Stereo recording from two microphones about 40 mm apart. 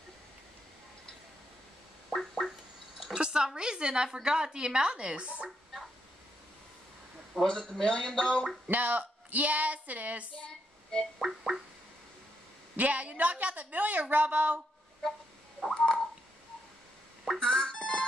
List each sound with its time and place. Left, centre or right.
2.0 s gargling: centre
3.2 s a woman's voice: centre
7.3 s speech: centre
7.8 s speech: left
8.6 s speech: right
10.4 s a sound: centre
11.1 s a sound: centre
12.7 s a woman's voice: right
15.7 s a sound: centre
17.4 s music: left